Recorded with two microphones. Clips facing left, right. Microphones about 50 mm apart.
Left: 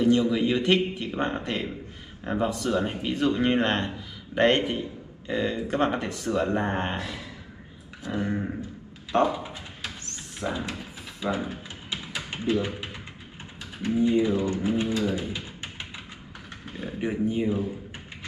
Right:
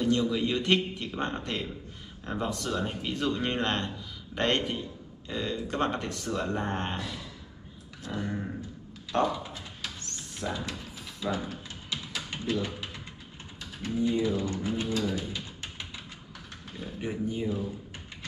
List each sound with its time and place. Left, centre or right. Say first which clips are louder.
0.0 s speech: left 5 dB; centre
8.2 s speech: left 5 dB; left
9.1 s a sound: left 4 dB; left
13.8 s speech: left 5 dB; centre